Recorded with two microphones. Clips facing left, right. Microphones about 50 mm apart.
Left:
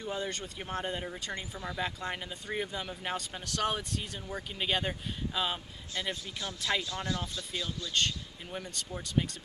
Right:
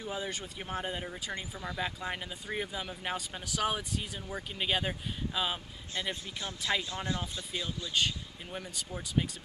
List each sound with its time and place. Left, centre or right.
0.0 s speech: centre
5.9 s speech: right
6.7 s speech: centre
7.1 s speech: centre
7.9 s speech: centre